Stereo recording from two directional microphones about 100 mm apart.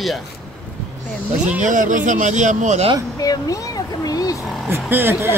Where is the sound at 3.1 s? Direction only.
35° left (ahead or behind).